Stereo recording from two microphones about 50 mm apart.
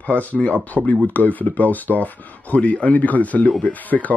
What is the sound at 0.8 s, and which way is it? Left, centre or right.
Speech, right.